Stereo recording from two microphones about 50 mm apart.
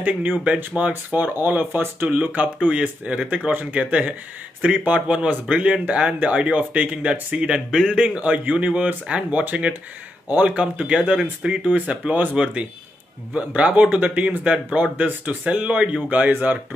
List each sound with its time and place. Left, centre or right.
0.8 s speech: right
1.1 s speech: right
2.1 s speech: right
7.3 s speech: centre
11.6 s speech: right
12.4 s speech: centre
16.3 s speech: right